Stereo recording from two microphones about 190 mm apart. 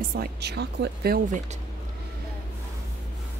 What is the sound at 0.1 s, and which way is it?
Speech, 55° right (ahead or behind).